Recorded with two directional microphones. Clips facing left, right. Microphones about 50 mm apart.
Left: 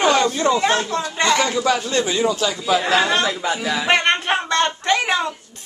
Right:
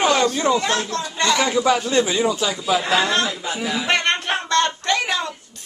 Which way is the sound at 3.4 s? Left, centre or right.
Left.